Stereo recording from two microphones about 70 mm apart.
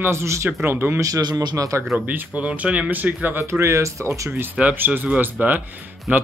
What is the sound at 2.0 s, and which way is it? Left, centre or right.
Speech, centre.